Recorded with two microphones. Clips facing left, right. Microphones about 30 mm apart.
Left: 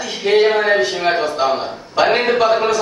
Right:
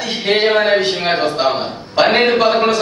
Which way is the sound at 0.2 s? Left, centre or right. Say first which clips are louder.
Left 1 dB; right.